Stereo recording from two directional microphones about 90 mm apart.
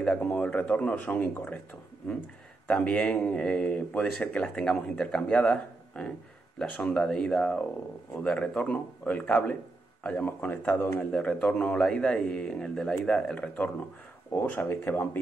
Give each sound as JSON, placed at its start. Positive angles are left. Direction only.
{"t": 0.0, "sound": "speech", "side_deg": 15}
{"t": 2.7, "sound": "a man's voice", "side_deg": 10}